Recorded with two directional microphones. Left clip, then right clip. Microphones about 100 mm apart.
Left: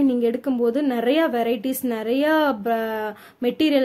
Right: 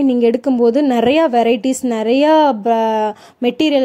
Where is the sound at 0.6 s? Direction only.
75° right (ahead or behind).